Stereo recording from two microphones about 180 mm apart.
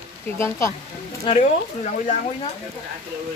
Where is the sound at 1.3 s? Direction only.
30° left (ahead or behind).